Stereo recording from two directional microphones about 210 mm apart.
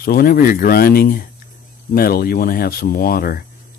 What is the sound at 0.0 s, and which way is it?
Speech, 45° left (ahead or behind).